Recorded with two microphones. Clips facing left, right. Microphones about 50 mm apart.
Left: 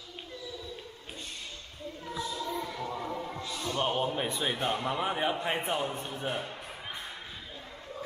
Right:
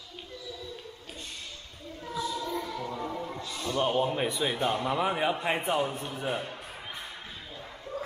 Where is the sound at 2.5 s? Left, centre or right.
Left.